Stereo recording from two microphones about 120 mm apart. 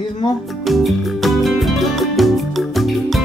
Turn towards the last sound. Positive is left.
turn(degrees=0)  # may be behind; listen again after turning